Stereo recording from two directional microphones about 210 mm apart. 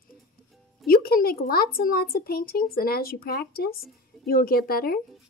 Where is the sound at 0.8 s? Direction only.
45° left (ahead or behind).